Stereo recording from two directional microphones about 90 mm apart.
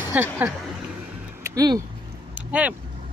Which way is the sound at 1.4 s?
45° right (ahead or behind).